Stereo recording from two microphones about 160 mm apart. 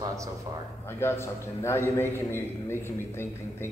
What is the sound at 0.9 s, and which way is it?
A man's voice, 15° left (ahead or behind).